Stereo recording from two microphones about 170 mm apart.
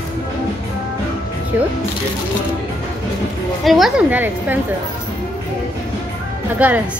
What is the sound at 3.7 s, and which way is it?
Speech, centre (ahead or behind).